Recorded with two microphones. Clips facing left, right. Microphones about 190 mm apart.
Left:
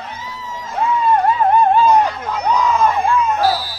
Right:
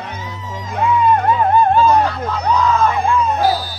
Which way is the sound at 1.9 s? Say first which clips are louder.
Even; 15° left (ahead or behind).